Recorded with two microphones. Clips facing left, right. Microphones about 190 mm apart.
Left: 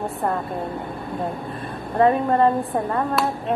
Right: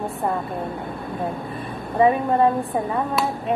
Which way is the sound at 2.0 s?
5° right (ahead or behind).